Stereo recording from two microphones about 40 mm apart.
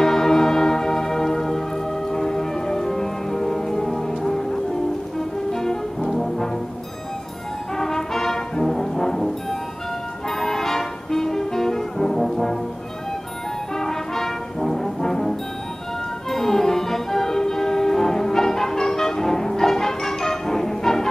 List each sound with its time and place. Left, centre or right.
0.0 s music: centre
5.5 s brass instrument: centre
7.7 s brass instrument: centre
10.4 s music: centre
13.7 s brass instrument: centre
16.3 s music: centre